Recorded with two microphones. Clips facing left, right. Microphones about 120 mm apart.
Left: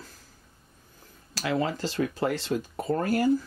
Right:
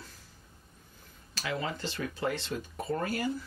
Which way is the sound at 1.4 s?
35° left (ahead or behind).